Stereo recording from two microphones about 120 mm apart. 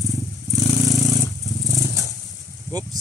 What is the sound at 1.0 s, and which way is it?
Dog, 30° left (ahead or behind).